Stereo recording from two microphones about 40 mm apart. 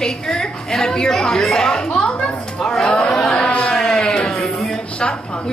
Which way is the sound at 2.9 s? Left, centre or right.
Left.